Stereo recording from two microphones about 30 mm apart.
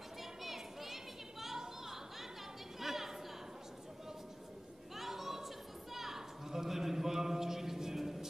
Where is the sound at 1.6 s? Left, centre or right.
Centre.